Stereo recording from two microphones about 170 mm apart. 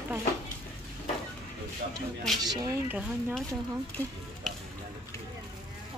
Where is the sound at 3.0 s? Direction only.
5° right (ahead or behind).